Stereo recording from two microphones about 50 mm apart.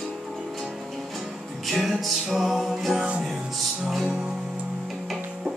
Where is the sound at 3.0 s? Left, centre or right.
Right.